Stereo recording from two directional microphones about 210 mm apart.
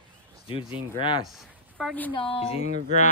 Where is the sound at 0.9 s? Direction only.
20° left (ahead or behind).